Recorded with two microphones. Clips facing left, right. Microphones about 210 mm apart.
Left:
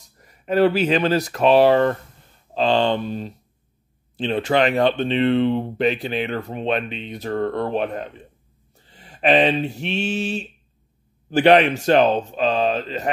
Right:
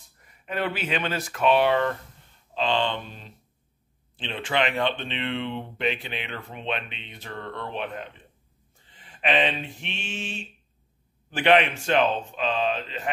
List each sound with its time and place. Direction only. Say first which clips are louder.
0.2 s speech: left 12 dB; 40° left (ahead or behind)
8.8 s a sound: left 8 dB; 40° left (ahead or behind)
11.2 s speech: left 6 dB; 40° left (ahead or behind)